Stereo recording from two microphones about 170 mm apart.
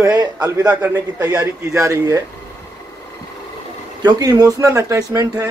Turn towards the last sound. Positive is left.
turn(degrees=-20)  # may be behind; listen again after turning